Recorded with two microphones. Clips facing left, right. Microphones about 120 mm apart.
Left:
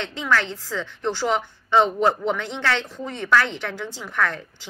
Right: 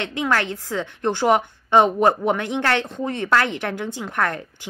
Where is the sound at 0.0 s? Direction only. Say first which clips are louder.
Right 1 dB; 60° right (ahead or behind).